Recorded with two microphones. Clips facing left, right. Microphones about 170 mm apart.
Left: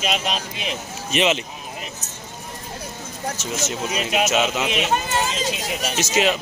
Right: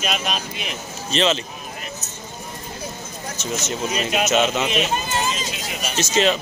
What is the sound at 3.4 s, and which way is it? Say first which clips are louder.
Speech: right 4 dB; 5° left (ahead or behind).